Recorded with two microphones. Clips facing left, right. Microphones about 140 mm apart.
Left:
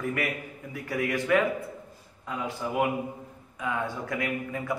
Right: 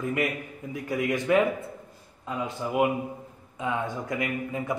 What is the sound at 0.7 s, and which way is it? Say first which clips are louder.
A man's voice: right 2 dB; 20° right (ahead or behind).